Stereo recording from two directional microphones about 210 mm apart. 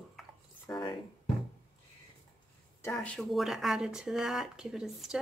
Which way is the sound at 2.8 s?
5° left (ahead or behind).